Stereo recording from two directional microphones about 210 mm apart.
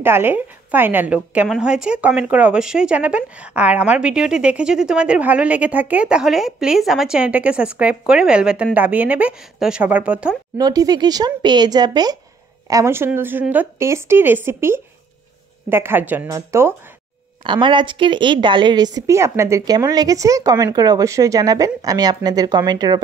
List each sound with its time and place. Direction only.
0.0 s a woman's voice: 10° right (ahead or behind)
10.6 s a woman's voice: 15° right (ahead or behind)